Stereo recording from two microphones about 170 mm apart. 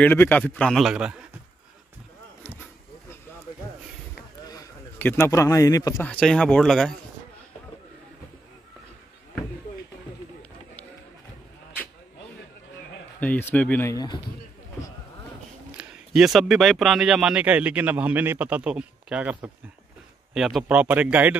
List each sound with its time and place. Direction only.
0.0 s a man's voice: 10° left (ahead or behind)
4.9 s a man's voice: 10° left (ahead or behind)
6.0 s speech: 5° left (ahead or behind)
13.2 s a man's voice: 10° left (ahead or behind)
15.8 s speech: centre (ahead or behind)